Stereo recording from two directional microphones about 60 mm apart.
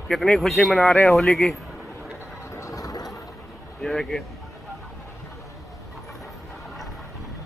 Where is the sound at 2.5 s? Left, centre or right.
Left.